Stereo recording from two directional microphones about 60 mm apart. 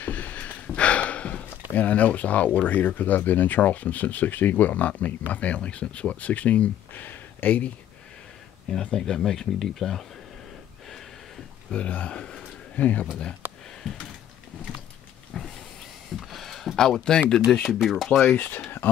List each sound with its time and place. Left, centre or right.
0.0 s a sound: left
1.7 s speech: left
8.6 s speech: centre
11.9 s speech: left
12.2 s a man's voice: centre
12.7 s speech: left
15.3 s a sound: centre
16.2 s a sound: centre
17.6 s speech: centre
18.2 s speech: left